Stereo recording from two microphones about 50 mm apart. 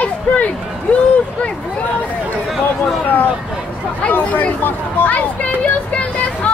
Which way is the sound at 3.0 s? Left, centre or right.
Left.